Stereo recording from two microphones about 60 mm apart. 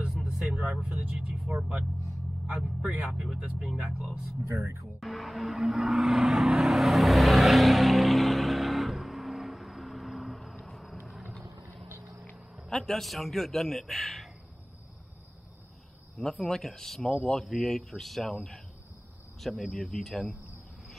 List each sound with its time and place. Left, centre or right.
0.1 s vehicle: centre
0.7 s a man's voice: centre
3.1 s a man's voice: centre
4.5 s speech: right
4.8 s vehicle: centre
12.5 s a man's voice: centre
16.2 s a man's voice: centre